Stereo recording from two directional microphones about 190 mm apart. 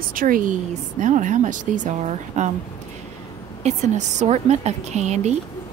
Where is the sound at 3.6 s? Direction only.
35° right (ahead or behind).